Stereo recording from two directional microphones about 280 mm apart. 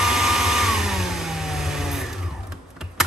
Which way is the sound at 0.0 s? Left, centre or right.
Centre.